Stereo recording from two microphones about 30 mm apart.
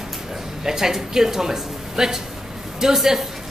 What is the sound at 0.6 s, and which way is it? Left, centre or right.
A woman's voice, centre.